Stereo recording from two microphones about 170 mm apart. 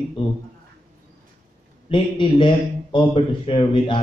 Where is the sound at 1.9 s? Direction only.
30° left (ahead or behind).